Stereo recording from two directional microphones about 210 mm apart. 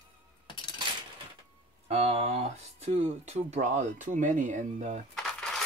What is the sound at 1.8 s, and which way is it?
Speech, 30° right (ahead or behind).